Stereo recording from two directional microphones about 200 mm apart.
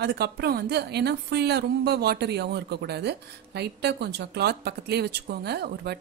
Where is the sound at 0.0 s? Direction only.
55° right (ahead or behind).